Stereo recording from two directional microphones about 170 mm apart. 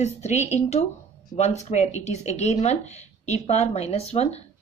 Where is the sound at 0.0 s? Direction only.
40° left (ahead or behind).